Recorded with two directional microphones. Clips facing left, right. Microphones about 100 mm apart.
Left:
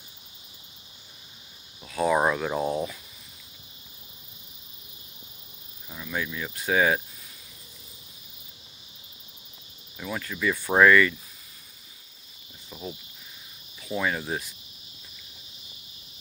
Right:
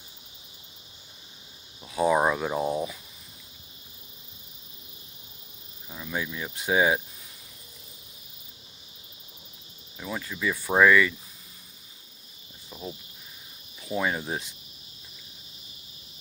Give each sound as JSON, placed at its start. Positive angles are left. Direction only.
{"t": 1.8, "sound": "a sound", "side_deg": -15}
{"t": 2.1, "sound": "speech", "side_deg": -10}
{"t": 5.9, "sound": "speech", "side_deg": -15}
{"t": 9.9, "sound": "speech", "side_deg": -15}
{"t": 13.7, "sound": "speech", "side_deg": -20}